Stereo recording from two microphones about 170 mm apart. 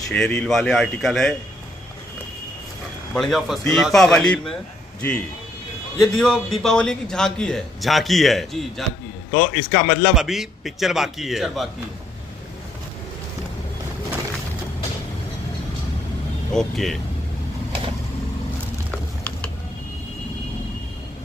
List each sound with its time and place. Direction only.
0.1 s a man's voice: 5° left (ahead or behind)
3.2 s a man's voice: centre (ahead or behind)
5.9 s a man's voice: centre (ahead or behind)
9.3 s a man's voice: 50° left (ahead or behind)
10.1 s a man's voice: centre (ahead or behind)
16.5 s a man's voice: centre (ahead or behind)
18.9 s typing: 5° left (ahead or behind)